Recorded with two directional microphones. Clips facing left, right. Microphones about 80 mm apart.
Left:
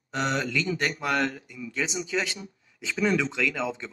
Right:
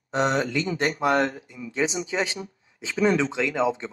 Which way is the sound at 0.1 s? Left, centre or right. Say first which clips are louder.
Right 4 dB; right.